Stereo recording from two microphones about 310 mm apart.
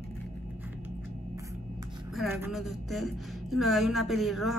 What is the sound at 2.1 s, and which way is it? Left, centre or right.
A woman's voice, centre.